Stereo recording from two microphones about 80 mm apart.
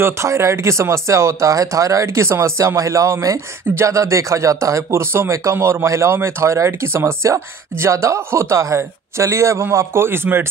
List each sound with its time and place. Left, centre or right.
0.0 s speech: right